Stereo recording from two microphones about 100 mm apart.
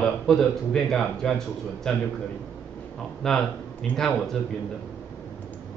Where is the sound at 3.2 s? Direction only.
5° left (ahead or behind).